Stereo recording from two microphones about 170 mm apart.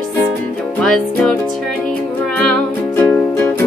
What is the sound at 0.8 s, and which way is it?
Music, centre (ahead or behind).